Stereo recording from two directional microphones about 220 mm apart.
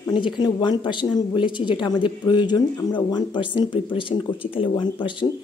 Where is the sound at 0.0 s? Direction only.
20° left (ahead or behind).